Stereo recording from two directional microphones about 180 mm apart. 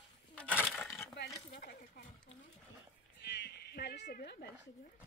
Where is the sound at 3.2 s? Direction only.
60° left (ahead or behind).